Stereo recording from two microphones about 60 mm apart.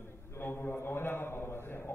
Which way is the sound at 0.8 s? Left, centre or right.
Left.